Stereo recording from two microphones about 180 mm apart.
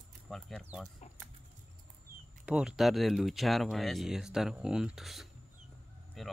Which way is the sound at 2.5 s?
5° right (ahead or behind).